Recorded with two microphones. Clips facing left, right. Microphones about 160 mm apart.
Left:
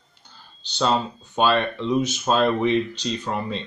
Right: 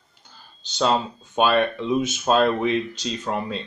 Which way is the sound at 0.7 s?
5° right (ahead or behind).